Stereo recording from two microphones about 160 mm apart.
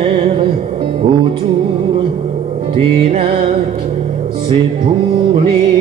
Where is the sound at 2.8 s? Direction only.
35° right (ahead or behind).